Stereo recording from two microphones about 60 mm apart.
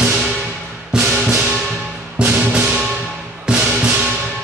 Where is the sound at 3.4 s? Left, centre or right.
Centre.